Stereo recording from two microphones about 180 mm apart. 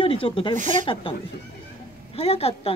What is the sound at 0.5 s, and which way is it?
Speech, 45° right (ahead or behind).